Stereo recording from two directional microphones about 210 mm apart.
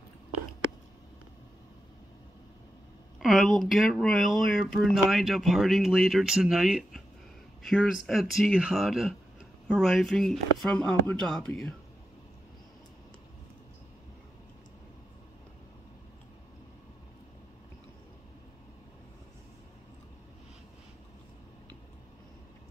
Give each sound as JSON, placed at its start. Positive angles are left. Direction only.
{"t": 3.2, "sound": "speech", "side_deg": 0}